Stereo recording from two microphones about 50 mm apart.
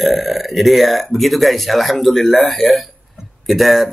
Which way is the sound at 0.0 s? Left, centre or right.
Centre.